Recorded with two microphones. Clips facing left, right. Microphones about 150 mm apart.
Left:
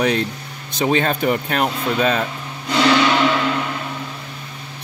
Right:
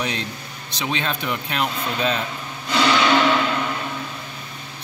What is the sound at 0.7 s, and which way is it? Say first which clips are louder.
Speech: left 8 dB; 45° left (ahead or behind).